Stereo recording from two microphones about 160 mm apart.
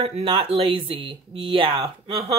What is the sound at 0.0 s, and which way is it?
Speech, 35° right (ahead or behind).